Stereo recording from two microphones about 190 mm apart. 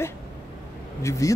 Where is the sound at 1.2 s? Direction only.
15° left (ahead or behind).